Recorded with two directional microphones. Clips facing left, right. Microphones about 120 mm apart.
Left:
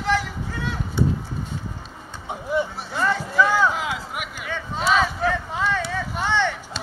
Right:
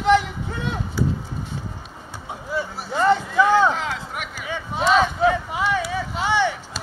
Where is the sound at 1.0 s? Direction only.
25° left (ahead or behind).